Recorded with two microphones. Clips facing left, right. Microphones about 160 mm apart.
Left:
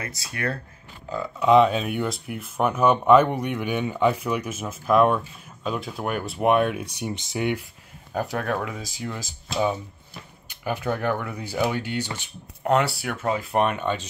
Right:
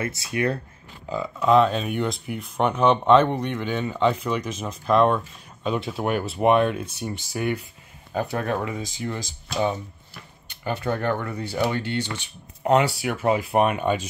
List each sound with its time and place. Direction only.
0.0 s speech: 25° right (ahead or behind)
1.1 s speech: 5° right (ahead or behind)
1.5 s speech: 10° left (ahead or behind)
8.1 s speech: centre (ahead or behind)
12.6 s speech: 5° right (ahead or behind)